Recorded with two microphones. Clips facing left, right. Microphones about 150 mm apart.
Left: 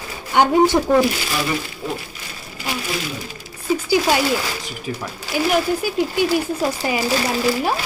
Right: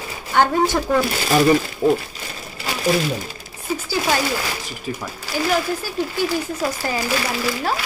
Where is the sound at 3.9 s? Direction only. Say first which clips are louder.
Left 3 dB; 15° left (ahead or behind).